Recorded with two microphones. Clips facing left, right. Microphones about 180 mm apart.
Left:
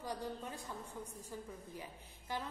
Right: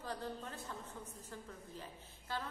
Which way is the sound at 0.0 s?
15° left (ahead or behind).